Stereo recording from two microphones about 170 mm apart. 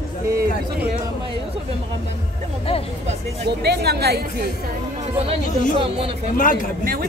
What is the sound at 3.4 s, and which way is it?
Speech, 70° right (ahead or behind).